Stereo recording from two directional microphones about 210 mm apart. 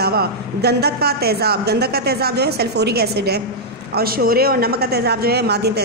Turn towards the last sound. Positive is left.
turn(degrees=-50)  # may be behind; listen again after turning